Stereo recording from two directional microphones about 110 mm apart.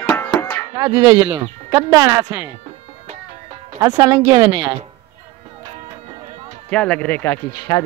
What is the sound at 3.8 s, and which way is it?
Speech, 35° right (ahead or behind).